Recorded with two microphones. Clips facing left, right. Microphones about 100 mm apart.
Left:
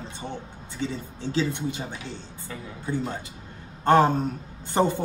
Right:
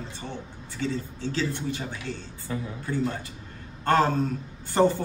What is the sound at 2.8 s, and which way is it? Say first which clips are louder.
A man's voice: left 1 dB; 20° left (ahead or behind).